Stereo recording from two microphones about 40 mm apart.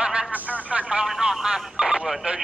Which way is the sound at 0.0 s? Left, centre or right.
Right.